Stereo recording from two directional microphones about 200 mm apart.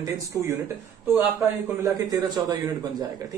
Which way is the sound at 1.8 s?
20° right (ahead or behind).